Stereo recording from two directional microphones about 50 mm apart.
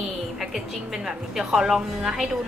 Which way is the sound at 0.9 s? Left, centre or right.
Centre.